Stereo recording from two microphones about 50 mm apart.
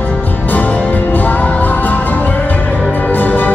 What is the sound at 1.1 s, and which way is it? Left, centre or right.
Music, left.